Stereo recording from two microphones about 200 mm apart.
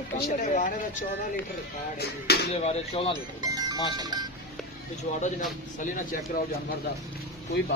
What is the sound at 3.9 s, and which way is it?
Speech, 20° right (ahead or behind).